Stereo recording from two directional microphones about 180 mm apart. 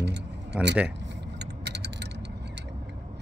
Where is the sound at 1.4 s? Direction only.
70° right (ahead or behind).